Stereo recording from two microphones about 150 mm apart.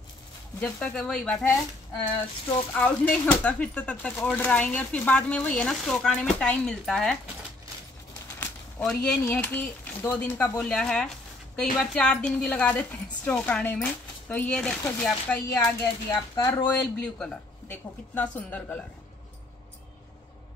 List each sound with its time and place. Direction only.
0.6 s speech: 10° left (ahead or behind)
2.7 s speech: 10° left (ahead or behind)
8.8 s speech: 5° left (ahead or behind)
16.8 s speech: 5° left (ahead or behind)